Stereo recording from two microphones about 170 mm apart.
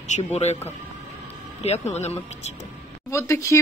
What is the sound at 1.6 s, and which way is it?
Speech, 40° left (ahead or behind).